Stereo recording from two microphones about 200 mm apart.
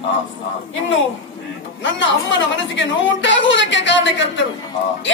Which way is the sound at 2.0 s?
65° left (ahead or behind).